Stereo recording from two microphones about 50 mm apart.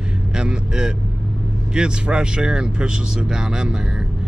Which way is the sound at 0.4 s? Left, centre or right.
Centre.